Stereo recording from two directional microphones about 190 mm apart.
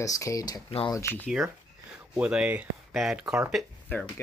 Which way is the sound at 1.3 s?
5° right (ahead or behind).